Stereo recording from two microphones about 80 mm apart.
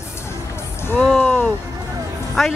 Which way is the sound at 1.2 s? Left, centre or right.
Left.